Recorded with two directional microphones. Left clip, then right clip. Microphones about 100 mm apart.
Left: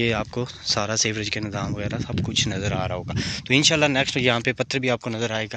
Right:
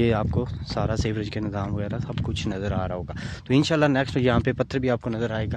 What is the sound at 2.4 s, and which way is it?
Speech, 55° right (ahead or behind).